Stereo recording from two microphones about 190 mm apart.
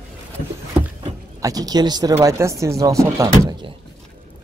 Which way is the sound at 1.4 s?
20° right (ahead or behind).